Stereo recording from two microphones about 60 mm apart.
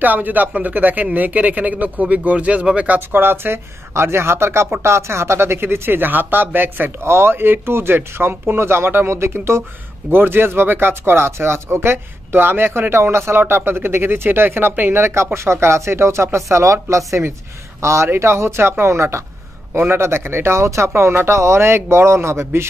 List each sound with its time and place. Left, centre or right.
0.0 s speech: right
3.1 s speech: right
7.0 s speech: right